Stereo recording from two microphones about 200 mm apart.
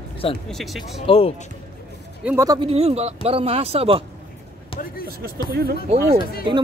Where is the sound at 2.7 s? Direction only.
30° right (ahead or behind).